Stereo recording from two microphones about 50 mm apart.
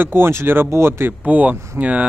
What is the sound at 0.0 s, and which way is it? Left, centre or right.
Speech, right.